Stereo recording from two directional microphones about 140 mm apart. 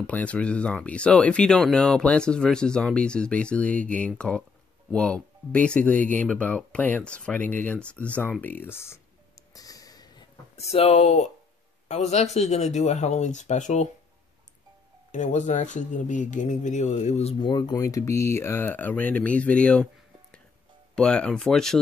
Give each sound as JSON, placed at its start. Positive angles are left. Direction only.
{"t": 0.0, "sound": "speech", "side_deg": 10}
{"t": 9.5, "sound": "a sound", "side_deg": 25}
{"t": 10.5, "sound": "speech", "side_deg": 50}
{"t": 15.0, "sound": "speech", "side_deg": 60}
{"t": 17.4, "sound": "speech", "side_deg": 30}